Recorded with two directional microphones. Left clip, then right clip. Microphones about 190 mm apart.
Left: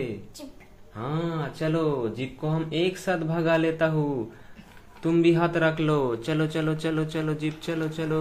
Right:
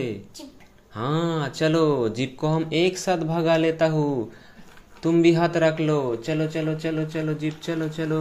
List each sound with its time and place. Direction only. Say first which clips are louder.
0.9 s speech: right 5 dB; 35° right (ahead or behind)
2.6 s speech: right 2 dB; 25° right (ahead or behind)